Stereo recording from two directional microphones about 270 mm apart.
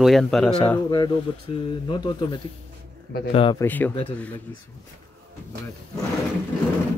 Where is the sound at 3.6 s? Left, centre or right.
Centre.